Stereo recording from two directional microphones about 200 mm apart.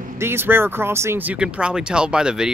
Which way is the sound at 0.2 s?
10° right (ahead or behind).